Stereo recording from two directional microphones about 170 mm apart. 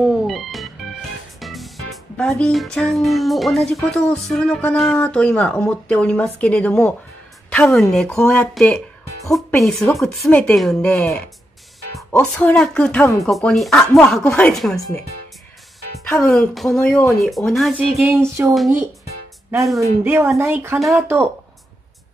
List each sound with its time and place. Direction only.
0.0 s music: centre (ahead or behind)
2.1 s speech: 5° left (ahead or behind)
12.1 s speech: 10° left (ahead or behind)
16.0 s speech: 5° left (ahead or behind)
18.4 s speech: 15° right (ahead or behind)
19.8 s speech: 15° right (ahead or behind)